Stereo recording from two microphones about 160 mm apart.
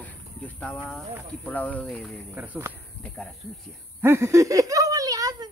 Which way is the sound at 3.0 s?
5° left (ahead or behind).